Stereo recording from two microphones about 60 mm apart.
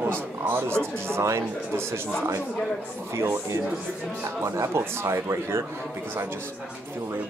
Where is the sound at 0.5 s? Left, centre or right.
Right.